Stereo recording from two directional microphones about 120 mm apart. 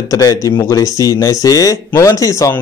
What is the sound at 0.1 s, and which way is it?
Speech, 30° left (ahead or behind).